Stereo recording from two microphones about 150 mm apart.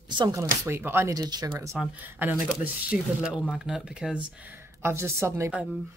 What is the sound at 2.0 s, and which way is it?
Speech, 15° right (ahead or behind).